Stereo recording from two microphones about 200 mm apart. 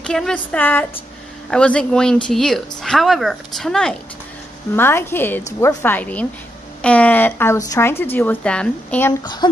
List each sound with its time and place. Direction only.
0.0 s a woman's voice: 5° left (ahead or behind)
9.2 s speech: 20° left (ahead or behind)